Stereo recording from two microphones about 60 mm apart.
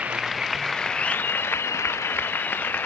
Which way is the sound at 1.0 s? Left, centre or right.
Left.